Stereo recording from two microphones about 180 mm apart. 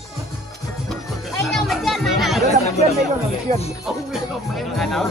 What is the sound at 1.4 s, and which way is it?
Chatter, centre (ahead or behind).